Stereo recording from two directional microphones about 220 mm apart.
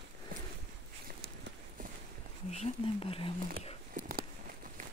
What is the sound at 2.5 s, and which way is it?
Speech, 30° left (ahead or behind).